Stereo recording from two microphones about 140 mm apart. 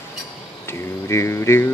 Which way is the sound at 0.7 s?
20° left (ahead or behind).